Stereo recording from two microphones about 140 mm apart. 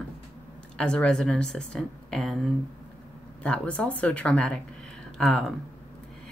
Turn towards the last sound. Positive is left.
turn(degrees=0)  # may be behind; listen again after turning